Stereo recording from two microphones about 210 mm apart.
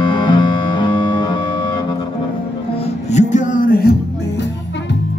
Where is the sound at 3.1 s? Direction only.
35° left (ahead or behind).